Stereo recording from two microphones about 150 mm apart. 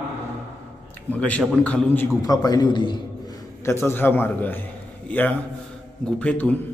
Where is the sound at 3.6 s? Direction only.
15° left (ahead or behind).